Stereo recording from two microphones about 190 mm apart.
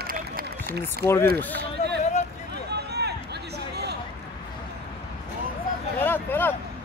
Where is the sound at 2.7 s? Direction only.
60° right (ahead or behind).